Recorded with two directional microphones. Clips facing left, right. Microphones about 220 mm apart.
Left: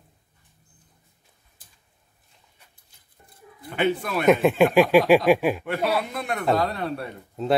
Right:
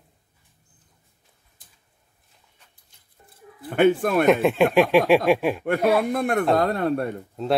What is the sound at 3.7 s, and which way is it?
Speech, 50° right (ahead or behind).